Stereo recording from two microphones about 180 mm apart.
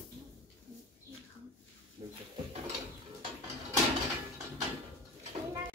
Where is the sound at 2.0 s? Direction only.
35° right (ahead or behind).